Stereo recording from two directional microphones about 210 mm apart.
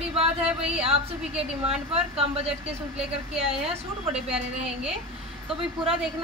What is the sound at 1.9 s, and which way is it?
Speech, 30° right (ahead or behind).